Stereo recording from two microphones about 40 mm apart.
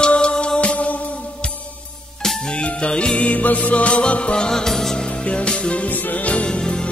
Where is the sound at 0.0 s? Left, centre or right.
Left.